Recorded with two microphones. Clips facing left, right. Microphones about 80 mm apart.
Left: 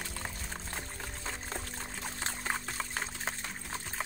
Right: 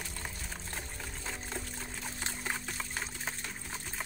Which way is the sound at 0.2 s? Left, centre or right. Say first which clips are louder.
Left 2 dB; left.